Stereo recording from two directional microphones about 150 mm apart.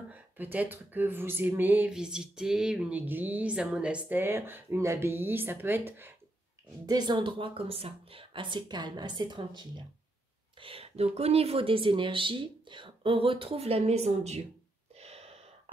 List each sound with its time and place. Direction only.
0.1 s speech: 10° right (ahead or behind)
6.9 s speech: 30° right (ahead or behind); by 14.4 s 45° right (ahead or behind)
15.0 s gasp: 45° right (ahead or behind)